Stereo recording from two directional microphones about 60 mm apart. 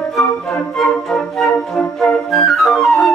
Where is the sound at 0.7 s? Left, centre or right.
Centre.